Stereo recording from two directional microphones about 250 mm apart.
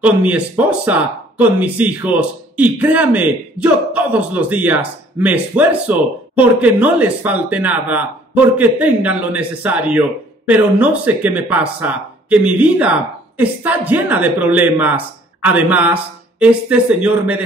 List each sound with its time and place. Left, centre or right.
0.0 s speech: centre